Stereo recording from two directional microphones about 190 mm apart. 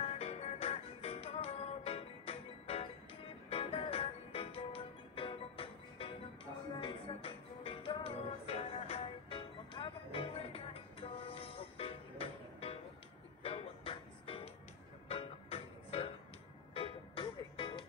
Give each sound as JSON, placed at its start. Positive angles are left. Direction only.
{"t": 0.0, "sound": "music", "side_deg": 35}